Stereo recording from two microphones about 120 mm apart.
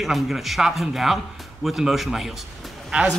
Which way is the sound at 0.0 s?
Centre (ahead or behind).